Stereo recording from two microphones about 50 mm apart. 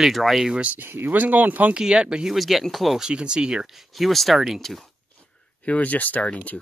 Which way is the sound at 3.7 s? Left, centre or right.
Centre.